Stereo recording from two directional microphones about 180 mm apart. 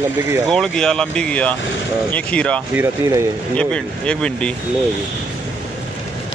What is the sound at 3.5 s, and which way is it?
Speech, 5° left (ahead or behind).